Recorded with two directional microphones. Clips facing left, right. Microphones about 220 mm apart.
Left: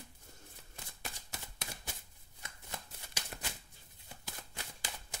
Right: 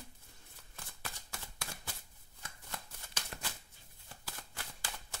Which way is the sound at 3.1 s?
15° left (ahead or behind).